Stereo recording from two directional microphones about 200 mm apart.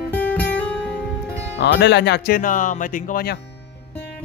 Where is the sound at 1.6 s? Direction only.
55° left (ahead or behind).